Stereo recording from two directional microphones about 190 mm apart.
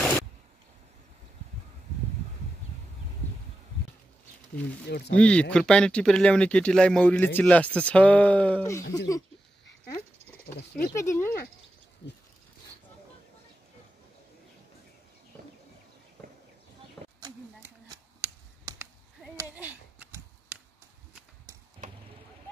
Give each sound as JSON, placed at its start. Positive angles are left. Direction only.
{"t": 4.8, "sound": "speech", "side_deg": 60}
{"t": 5.1, "sound": "speech", "side_deg": 5}
{"t": 11.0, "sound": "speech", "side_deg": 15}
{"t": 17.2, "sound": "a sound", "side_deg": -15}